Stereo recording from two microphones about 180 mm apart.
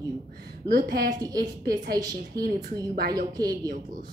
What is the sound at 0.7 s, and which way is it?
Speech, 60° right (ahead or behind).